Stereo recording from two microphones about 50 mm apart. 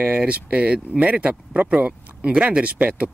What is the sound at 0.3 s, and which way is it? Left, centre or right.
Speech, right.